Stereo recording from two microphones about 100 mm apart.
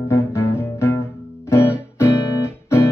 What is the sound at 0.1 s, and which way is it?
Music, 25° left (ahead or behind).